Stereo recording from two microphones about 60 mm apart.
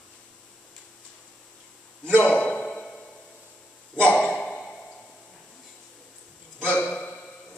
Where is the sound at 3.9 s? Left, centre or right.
Centre.